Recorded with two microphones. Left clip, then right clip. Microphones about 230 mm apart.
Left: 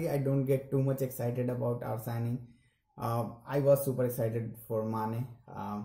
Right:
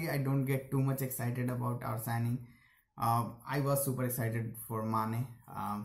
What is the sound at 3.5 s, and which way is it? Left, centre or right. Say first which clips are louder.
Speech: left 8 dB; centre.